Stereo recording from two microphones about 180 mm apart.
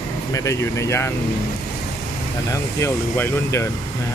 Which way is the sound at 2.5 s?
15° left (ahead or behind).